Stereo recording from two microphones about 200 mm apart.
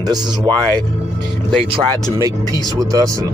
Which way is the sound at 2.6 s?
15° right (ahead or behind).